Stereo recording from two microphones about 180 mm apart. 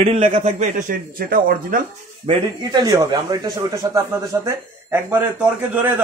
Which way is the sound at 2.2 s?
25° right (ahead or behind).